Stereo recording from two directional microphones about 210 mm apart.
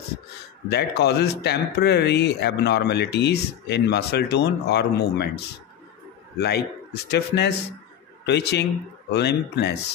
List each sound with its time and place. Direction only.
0.7 s speech: 50° left (ahead or behind)
6.4 s speech: 50° left (ahead or behind)